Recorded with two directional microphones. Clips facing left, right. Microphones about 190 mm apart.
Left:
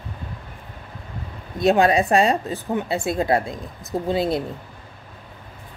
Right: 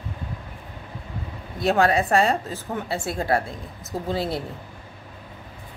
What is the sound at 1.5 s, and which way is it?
A woman's voice, 15° left (ahead or behind).